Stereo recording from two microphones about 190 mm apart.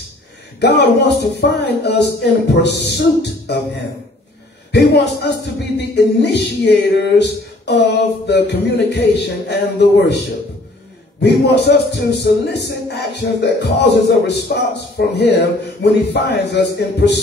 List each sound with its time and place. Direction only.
0.6 s speech: 60° left (ahead or behind)
4.7 s speech: 60° left (ahead or behind)